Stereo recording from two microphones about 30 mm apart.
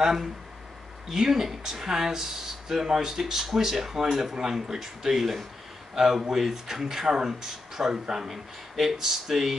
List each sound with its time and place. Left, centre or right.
0.0 s speech: centre